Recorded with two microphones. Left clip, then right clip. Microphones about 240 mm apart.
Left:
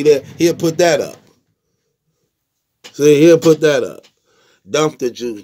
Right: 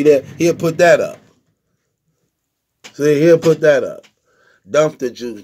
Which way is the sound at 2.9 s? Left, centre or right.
Left.